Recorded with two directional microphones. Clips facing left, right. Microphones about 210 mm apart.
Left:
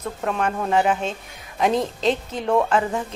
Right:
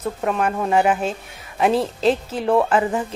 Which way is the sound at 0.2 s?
5° right (ahead or behind).